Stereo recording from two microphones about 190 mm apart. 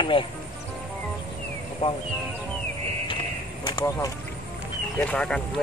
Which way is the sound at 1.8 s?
30° left (ahead or behind).